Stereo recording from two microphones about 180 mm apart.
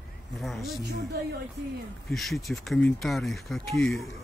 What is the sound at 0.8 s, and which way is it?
Speech, 65° right (ahead or behind).